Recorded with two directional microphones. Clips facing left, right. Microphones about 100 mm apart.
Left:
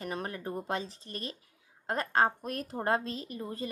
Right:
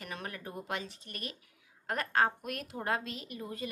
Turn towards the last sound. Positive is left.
turn(degrees=35)  # may be behind; listen again after turning